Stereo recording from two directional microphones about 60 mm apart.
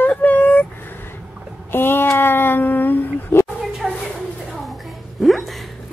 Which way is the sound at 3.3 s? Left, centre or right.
Left.